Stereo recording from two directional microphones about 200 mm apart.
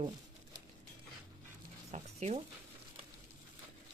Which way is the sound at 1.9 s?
35° right (ahead or behind).